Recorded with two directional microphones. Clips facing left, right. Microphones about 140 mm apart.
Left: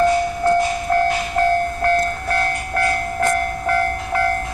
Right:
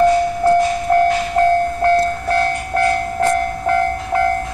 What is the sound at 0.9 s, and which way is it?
Train, 25° right (ahead or behind).